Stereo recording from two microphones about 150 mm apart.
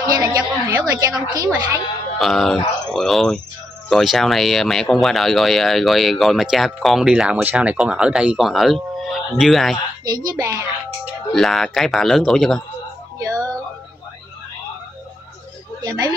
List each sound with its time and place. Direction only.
0.0 s a woman's voice: 25° right (ahead or behind)
2.1 s speech: centre (ahead or behind)
10.0 s a woman's voice: 25° right (ahead or behind)
11.3 s speech: centre (ahead or behind)
13.2 s music: 20° right (ahead or behind)
15.8 s speech: 25° right (ahead or behind)